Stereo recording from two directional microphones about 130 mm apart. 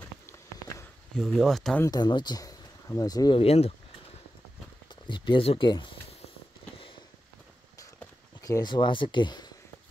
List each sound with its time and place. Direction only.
0.3 s a sound: 20° left (ahead or behind)
1.1 s speech: centre (ahead or behind)
1.9 s speech: 35° left (ahead or behind)
3.3 s speech: 50° left (ahead or behind)
5.0 s speech: 40° left (ahead or behind)
8.4 s speech: 25° left (ahead or behind)